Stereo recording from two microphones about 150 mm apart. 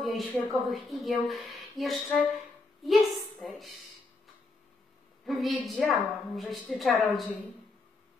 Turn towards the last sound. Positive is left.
turn(degrees=0)  # may be behind; listen again after turning